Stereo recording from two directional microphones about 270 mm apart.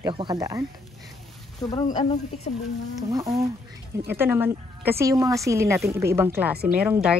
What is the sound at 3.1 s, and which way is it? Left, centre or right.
Speech, centre.